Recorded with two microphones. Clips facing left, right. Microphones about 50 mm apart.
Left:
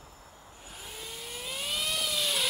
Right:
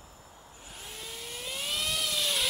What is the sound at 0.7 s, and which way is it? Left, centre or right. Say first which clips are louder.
Vehicle: even; centre.